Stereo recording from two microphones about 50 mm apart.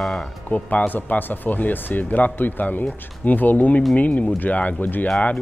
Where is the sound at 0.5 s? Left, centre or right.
Left.